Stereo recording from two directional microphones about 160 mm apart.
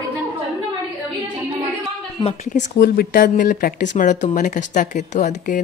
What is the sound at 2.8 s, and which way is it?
Speech, 75° left (ahead or behind).